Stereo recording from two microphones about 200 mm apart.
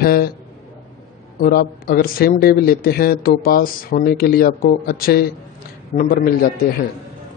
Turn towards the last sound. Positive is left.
turn(degrees=45)  # may be behind; listen again after turning